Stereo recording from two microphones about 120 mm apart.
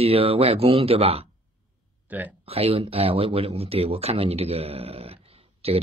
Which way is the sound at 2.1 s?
15° right (ahead or behind).